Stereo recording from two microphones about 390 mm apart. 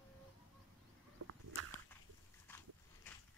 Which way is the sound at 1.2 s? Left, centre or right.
Right.